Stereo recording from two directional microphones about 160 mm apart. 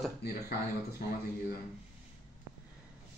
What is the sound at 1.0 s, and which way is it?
Speech, 75° left (ahead or behind).